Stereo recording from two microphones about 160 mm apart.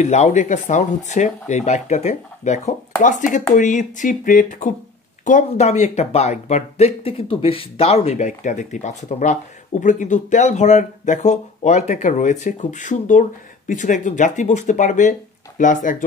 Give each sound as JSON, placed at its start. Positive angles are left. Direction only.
{"t": 0.0, "sound": "speech", "side_deg": 45}